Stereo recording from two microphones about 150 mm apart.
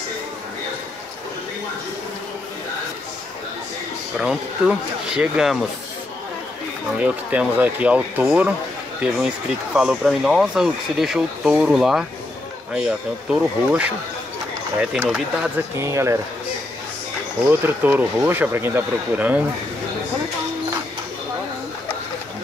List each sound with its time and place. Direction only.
4.2 s speech: 5° right (ahead or behind)
7.0 s speech: 10° right (ahead or behind)
9.8 s speech: 5° right (ahead or behind)
15.0 s speech: 5° right (ahead or behind)
15.8 s speech: 20° right (ahead or behind)
17.5 s speech: 10° right (ahead or behind)